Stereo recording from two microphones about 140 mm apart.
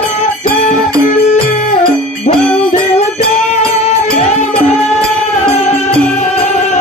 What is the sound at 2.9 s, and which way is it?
Music, 50° left (ahead or behind).